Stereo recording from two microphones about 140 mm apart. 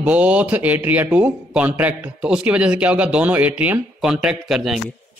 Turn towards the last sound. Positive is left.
turn(degrees=-5)  # may be behind; listen again after turning